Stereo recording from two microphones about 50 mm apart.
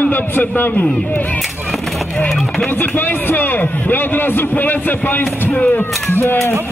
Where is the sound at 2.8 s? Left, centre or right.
Left.